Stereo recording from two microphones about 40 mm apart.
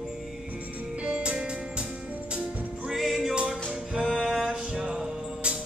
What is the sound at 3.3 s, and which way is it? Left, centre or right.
Music, right.